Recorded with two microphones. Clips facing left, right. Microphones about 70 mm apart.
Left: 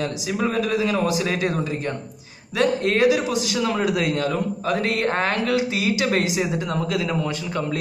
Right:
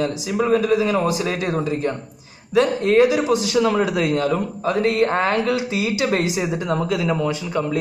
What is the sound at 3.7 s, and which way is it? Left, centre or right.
A man's voice, right.